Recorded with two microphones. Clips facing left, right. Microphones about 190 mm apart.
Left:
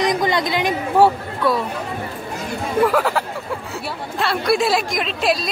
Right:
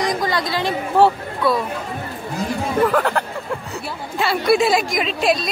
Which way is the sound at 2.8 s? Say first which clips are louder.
Left 1 dB; 5° left (ahead or behind).